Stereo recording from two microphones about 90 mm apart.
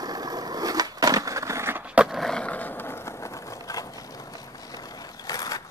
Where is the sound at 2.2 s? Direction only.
10° left (ahead or behind); by 5.6 s 40° left (ahead or behind).